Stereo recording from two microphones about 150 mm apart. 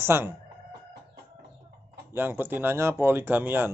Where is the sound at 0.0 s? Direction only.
15° right (ahead or behind).